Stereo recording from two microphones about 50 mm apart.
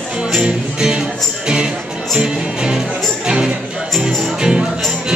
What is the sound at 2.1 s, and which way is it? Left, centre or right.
Music, centre.